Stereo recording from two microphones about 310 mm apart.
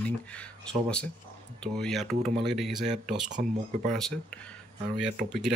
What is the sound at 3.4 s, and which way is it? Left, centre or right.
Speech, right.